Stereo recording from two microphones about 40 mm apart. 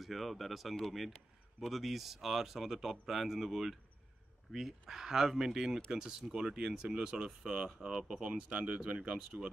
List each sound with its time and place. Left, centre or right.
0.0 s speech: centre
8.2 s speech: right